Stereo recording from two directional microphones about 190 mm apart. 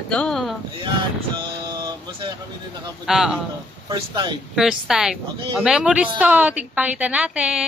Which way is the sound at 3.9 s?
20° right (ahead or behind).